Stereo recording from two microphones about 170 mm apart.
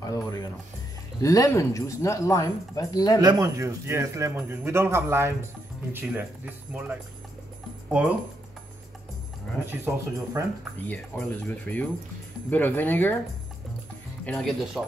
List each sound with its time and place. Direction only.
0.0 s music: 20° left (ahead or behind)
1.2 s speech: 20° left (ahead or behind)
3.2 s speech: 20° right (ahead or behind)
9.7 s speech: 15° right (ahead or behind)
10.9 s speech: 10° left (ahead or behind)
14.2 s speech: centre (ahead or behind)